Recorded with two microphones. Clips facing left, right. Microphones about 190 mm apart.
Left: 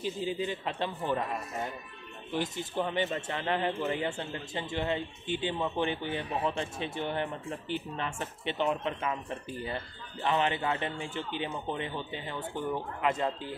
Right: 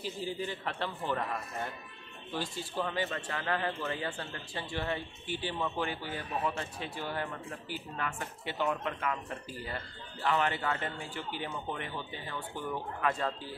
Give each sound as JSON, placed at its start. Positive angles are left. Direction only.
{"t": 0.0, "sound": "a man's voice", "side_deg": 20}